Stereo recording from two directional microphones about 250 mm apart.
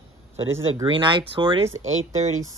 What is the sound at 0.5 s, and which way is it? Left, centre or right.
Speech, centre.